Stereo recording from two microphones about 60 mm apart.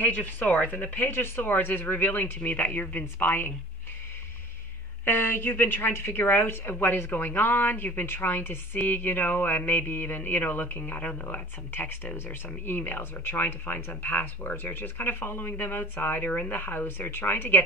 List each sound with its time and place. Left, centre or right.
0.0 s a woman's voice: left
5.0 s a woman's voice: left